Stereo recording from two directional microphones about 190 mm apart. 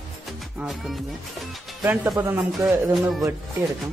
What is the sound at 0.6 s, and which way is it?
Music, centre (ahead or behind).